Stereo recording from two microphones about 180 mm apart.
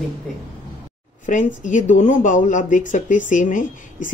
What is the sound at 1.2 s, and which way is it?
Speech, 45° left (ahead or behind).